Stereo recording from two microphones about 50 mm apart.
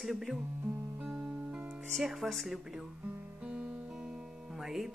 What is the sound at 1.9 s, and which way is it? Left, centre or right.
Speech, centre.